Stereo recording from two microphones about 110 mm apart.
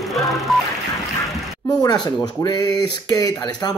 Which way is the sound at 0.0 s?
Centre (ahead or behind).